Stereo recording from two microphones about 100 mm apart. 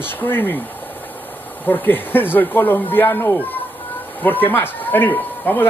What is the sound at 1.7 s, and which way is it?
Speech, 20° left (ahead or behind).